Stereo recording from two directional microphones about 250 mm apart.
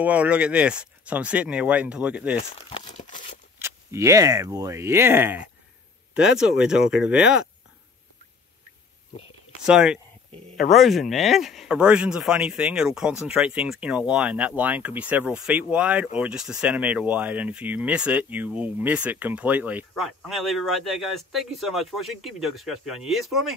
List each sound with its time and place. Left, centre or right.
0.0 s speech: centre
2.7 s a sound: left
3.5 s speech: centre
9.7 s speech: centre